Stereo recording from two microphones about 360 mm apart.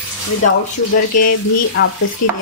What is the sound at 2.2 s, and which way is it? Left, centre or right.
Speech, left.